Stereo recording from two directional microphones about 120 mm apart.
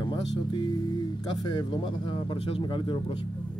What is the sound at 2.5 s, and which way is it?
Speech, 45° left (ahead or behind).